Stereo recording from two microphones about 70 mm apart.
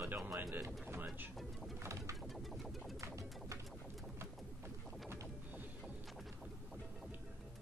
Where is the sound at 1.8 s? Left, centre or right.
Right.